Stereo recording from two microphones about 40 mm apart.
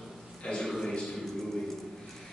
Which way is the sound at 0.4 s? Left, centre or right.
Left.